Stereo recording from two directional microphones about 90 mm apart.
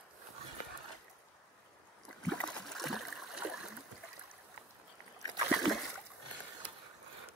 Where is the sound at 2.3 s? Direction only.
10° left (ahead or behind).